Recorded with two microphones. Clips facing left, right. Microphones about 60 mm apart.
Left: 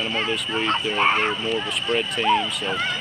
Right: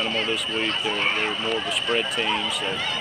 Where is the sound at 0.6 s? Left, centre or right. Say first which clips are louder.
Left 7 dB; left.